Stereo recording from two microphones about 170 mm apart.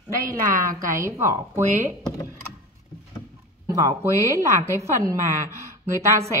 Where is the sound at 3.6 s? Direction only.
20° right (ahead or behind).